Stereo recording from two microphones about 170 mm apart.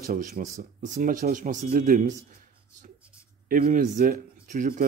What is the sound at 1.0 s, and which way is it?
Speech, 60° right (ahead or behind).